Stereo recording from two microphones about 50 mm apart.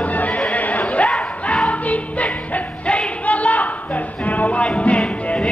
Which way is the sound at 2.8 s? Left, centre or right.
Left.